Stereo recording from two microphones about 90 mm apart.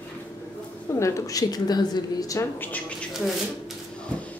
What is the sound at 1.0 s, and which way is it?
A woman's voice, 40° left (ahead or behind).